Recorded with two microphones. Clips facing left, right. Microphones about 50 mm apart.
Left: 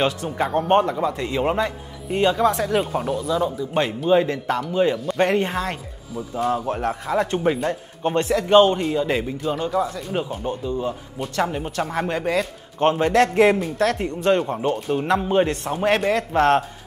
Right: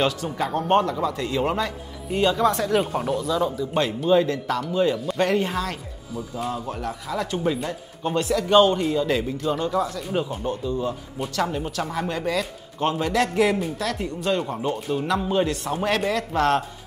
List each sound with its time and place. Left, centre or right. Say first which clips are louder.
0.0 s a man's voice: left 2 dB; left
2.8 s speech: left 1 dB; centre
4.1 s a man's voice: left 1 dB; left
4.9 s speech: left 2 dB; centre
5.2 s a man's voice: left 2 dB; left
6.5 s a man's voice: left 6 dB; left; by 9.5 s centre
9.5 s speech: left 1 dB; centre
10.5 s a man's voice: left 1 dB; centre
11.9 s a man's voice: left 3 dB; left